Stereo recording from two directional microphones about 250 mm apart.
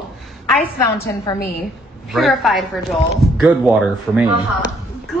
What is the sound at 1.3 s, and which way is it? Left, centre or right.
Speech, centre.